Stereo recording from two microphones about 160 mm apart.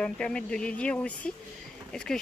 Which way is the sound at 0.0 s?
5° left (ahead or behind).